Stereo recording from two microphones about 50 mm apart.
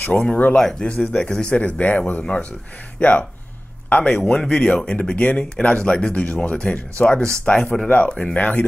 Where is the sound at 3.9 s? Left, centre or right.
Left.